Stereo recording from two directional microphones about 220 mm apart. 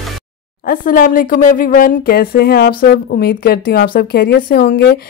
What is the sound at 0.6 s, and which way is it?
A woman's voice, 40° left (ahead or behind).